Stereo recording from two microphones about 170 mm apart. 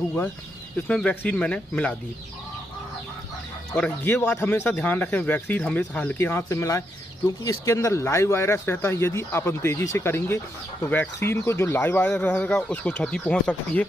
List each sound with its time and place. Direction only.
0.8 s speech: 5° left (ahead or behind)
3.7 s speech: 10° left (ahead or behind)